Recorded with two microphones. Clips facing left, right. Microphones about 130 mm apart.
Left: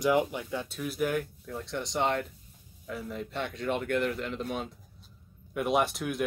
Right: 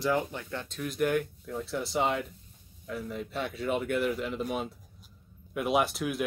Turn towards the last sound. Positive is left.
turn(degrees=0)  # may be behind; listen again after turning